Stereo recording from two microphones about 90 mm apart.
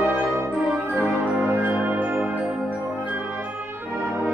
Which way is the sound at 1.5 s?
25° right (ahead or behind).